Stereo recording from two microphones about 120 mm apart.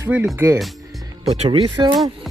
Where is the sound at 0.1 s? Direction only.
10° right (ahead or behind).